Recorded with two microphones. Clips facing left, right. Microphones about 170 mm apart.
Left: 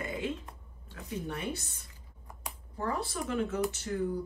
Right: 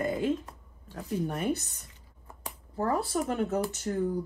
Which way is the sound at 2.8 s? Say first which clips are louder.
Right 6 dB; 40° right (ahead or behind).